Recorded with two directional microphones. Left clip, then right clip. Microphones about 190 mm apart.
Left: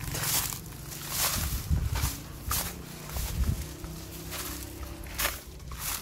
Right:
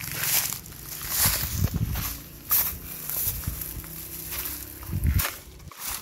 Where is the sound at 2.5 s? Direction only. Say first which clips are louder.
Right 2 dB; 60° right (ahead or behind).